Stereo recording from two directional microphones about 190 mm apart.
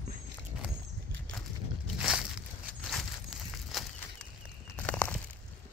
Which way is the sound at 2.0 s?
5° right (ahead or behind).